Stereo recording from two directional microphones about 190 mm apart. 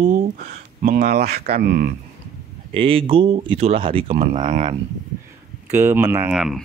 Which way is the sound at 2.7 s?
30° right (ahead or behind).